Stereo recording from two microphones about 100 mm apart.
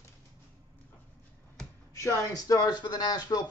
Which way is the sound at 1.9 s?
35° left (ahead or behind).